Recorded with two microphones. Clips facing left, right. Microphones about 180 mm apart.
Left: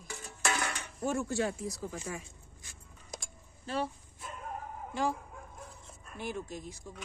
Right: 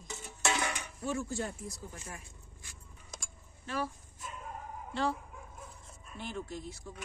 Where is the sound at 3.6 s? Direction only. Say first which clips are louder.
Left 2 dB; 30° left (ahead or behind).